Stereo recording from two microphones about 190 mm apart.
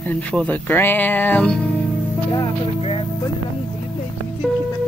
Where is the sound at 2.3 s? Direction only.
25° left (ahead or behind).